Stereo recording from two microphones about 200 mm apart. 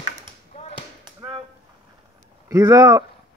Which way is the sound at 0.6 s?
30° left (ahead or behind).